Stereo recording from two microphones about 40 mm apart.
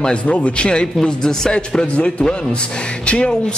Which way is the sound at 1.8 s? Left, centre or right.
Left.